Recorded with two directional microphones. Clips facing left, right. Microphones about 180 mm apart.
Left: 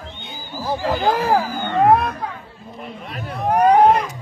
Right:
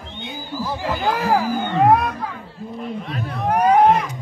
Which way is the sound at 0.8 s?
Centre (ahead or behind).